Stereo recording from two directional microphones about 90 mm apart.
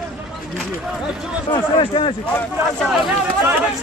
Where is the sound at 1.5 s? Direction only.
70° left (ahead or behind).